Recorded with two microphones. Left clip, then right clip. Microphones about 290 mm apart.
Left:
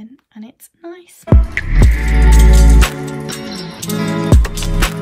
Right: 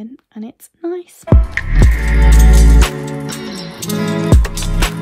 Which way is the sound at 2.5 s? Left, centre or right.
Centre.